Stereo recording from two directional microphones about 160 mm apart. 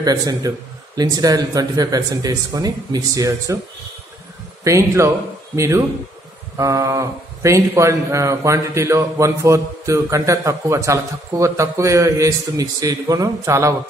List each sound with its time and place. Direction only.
0.0 s a man's voice: 25° right (ahead or behind)
4.6 s a man's voice: 20° right (ahead or behind)